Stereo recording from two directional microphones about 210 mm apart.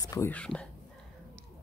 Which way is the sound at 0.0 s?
15° left (ahead or behind).